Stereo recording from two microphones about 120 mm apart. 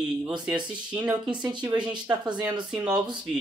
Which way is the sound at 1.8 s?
40° right (ahead or behind).